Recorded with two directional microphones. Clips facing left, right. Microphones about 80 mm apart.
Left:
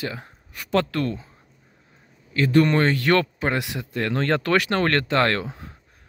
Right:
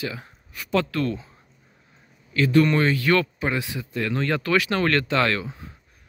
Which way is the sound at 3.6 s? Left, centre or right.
Left.